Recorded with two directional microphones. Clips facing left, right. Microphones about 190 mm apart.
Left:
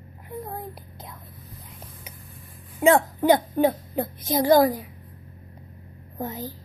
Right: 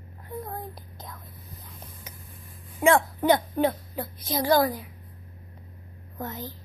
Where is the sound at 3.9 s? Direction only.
50° left (ahead or behind).